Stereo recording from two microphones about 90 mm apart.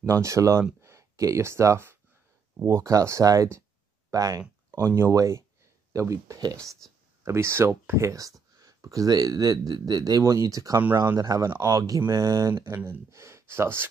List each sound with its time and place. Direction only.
0.0 s speech: 35° right (ahead or behind)
4.8 s speech: 30° right (ahead or behind)